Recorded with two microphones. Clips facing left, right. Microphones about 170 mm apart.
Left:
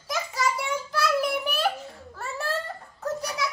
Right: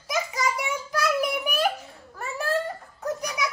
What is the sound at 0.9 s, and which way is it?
Child singing, 15° right (ahead or behind).